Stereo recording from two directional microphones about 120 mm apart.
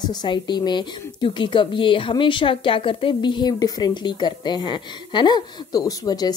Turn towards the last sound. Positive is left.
turn(degrees=35)  # may be behind; listen again after turning